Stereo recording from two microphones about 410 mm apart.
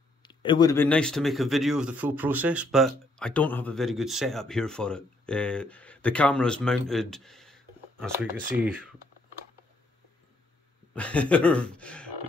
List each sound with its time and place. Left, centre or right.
0.2 s speech: centre
11.0 s speech: centre